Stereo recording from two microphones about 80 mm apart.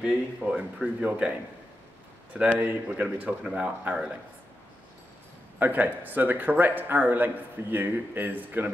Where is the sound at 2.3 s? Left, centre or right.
Centre.